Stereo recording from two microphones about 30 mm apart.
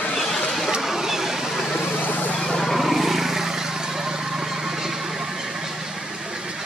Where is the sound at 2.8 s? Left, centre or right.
Centre.